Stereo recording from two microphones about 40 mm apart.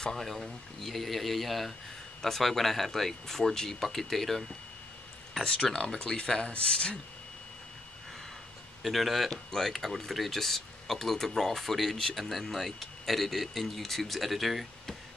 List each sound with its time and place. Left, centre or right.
0.0 s speech: centre
0.3 s speech: centre
5.4 s speech: left
8.8 s speech: centre